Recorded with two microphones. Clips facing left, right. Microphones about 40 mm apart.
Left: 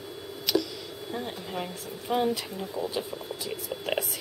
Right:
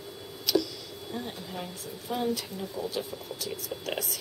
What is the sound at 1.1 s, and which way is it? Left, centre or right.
Speech, left.